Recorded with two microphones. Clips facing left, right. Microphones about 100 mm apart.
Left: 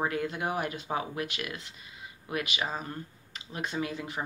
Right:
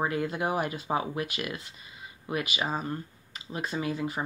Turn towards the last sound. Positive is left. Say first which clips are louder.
# right 3 dB
turn(degrees=0)  # may be behind; listen again after turning